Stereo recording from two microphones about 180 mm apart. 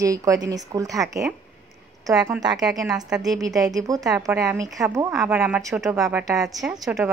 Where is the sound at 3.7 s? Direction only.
20° right (ahead or behind).